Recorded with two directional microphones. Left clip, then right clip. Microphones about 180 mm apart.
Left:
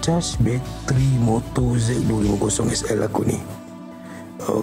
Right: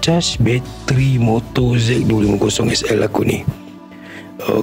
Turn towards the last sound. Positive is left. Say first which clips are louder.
# right 5 dB
turn(degrees=-25)  # may be behind; listen again after turning